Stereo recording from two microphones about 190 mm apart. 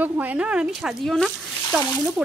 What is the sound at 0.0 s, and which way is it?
Speech, 10° right (ahead or behind).